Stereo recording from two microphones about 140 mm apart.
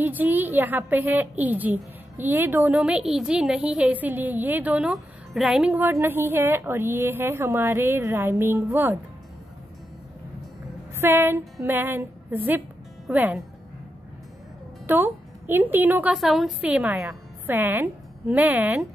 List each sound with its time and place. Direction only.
0.0 s a woman's voice: 10° right (ahead or behind)
11.0 s a woman's voice: 15° right (ahead or behind)
14.9 s a woman's voice: 15° right (ahead or behind)